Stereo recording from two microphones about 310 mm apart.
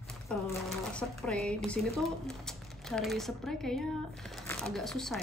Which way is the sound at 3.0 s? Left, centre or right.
Centre.